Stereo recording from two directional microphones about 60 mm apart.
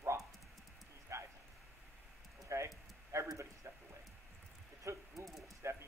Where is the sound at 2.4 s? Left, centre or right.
Right.